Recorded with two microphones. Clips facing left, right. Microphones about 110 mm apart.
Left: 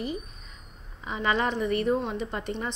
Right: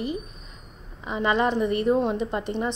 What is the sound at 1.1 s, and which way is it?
A woman's voice, 15° right (ahead or behind).